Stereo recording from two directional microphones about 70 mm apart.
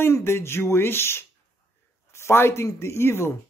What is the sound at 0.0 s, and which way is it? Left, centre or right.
Speech, left.